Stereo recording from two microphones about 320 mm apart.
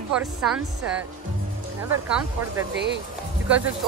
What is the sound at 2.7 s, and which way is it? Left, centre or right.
Speech, right.